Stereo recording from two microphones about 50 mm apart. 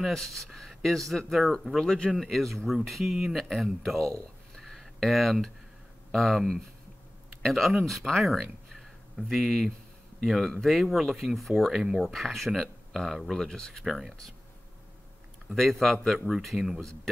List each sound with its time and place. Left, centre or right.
0.1 s speech: centre
3.3 s speech: centre
15.5 s speech: centre